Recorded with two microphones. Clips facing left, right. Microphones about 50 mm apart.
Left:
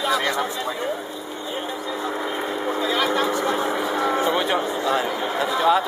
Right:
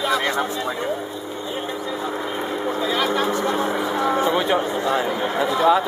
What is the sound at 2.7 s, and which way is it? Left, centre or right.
Vehicle, centre.